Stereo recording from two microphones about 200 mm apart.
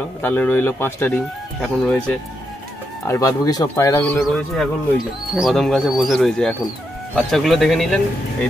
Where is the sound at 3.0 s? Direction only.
15° left (ahead or behind).